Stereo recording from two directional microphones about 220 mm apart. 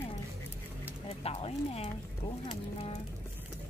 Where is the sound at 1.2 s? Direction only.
25° left (ahead or behind).